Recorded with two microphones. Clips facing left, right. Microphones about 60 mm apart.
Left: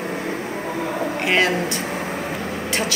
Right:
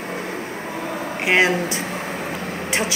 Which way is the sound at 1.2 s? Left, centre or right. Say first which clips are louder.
Right 2 dB; centre.